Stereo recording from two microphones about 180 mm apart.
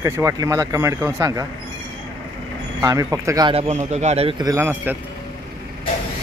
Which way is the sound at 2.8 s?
15° right (ahead or behind).